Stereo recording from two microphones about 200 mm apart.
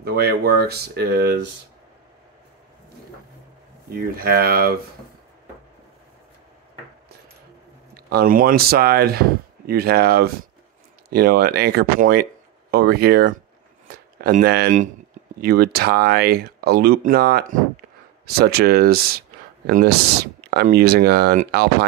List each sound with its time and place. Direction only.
0.0 s speech: 50° right (ahead or behind)
3.9 s speech: 50° right (ahead or behind)
7.9 s speech: 50° right (ahead or behind)